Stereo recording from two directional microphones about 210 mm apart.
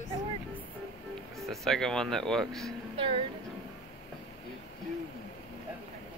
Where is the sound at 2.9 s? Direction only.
25° right (ahead or behind).